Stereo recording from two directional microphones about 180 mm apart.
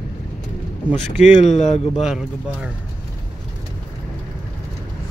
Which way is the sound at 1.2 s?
40° left (ahead or behind).